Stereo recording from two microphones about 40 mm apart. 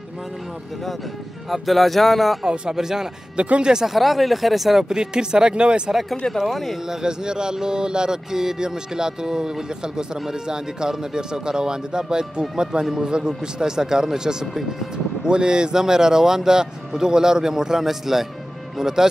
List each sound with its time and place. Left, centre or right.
1.5 s speech: centre
2.4 s speech: right
3.3 s speech: right
3.7 s speech: centre
4.8 s speech: centre
6.4 s speech: centre
6.9 s speech: centre